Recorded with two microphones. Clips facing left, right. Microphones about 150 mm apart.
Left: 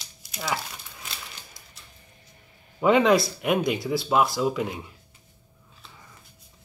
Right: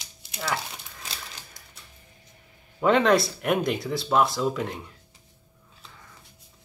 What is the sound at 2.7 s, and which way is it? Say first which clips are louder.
Speech: left 1 dB; 5° left (ahead or behind).